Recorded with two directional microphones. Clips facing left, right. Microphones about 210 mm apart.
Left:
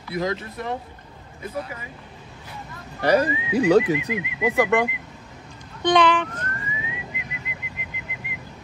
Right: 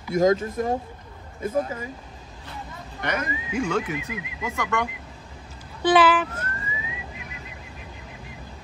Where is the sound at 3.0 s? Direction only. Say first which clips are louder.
Left 9 dB; 35° left (ahead or behind).